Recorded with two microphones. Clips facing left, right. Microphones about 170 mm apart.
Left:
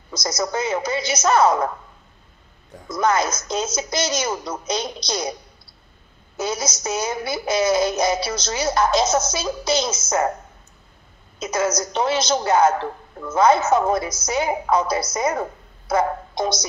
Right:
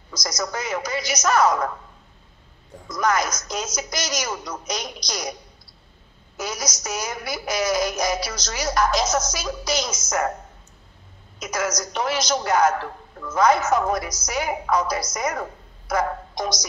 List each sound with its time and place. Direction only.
0.1 s a woman's voice: 25° left (ahead or behind)
2.9 s a woman's voice: 25° left (ahead or behind)
6.3 s a woman's voice: 25° left (ahead or behind)
11.3 s a woman's voice: 25° left (ahead or behind)